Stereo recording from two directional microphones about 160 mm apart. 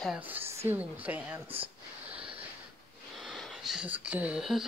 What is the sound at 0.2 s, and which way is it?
Speech, 10° right (ahead or behind).